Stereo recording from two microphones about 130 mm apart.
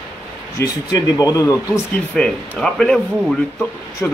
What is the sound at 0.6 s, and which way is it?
Speech, 30° left (ahead or behind).